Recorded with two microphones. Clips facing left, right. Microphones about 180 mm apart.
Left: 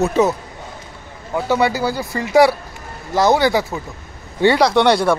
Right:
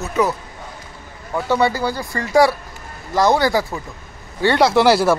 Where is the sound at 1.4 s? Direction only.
5° left (ahead or behind).